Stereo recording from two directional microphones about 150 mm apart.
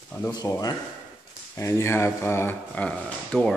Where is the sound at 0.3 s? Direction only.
25° left (ahead or behind).